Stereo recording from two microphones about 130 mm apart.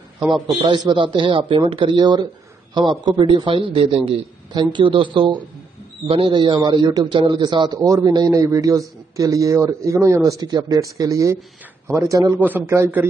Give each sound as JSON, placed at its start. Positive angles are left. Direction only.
{"t": 0.3, "sound": "speech", "side_deg": -35}
{"t": 4.5, "sound": "a man's voice", "side_deg": -35}
{"t": 12.4, "sound": "a man's voice", "side_deg": -15}